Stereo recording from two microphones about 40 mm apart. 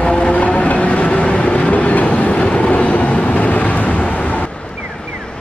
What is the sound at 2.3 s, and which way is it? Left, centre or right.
Vehicle, left.